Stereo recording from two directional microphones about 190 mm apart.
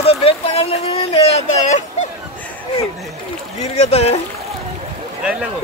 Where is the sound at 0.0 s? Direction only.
30° left (ahead or behind).